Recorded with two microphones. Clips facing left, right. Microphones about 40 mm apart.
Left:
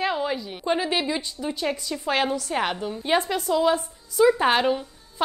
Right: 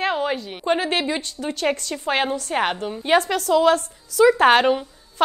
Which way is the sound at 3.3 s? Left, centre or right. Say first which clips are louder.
Right 4 dB; right.